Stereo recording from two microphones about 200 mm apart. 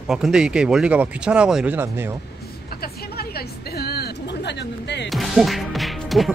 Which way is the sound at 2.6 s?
50° left (ahead or behind).